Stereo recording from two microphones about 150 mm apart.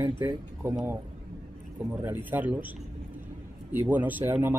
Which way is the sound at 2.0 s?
15° right (ahead or behind).